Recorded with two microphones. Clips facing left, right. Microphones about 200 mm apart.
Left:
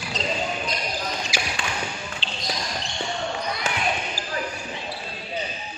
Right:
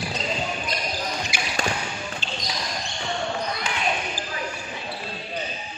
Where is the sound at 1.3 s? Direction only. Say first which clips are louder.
Left 2 dB; 55° right (ahead or behind).